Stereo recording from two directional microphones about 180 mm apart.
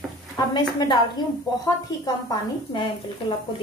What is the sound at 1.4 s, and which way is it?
A woman's voice, 20° left (ahead or behind).